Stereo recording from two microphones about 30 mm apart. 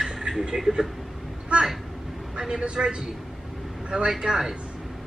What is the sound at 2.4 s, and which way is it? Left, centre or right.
Speech, right.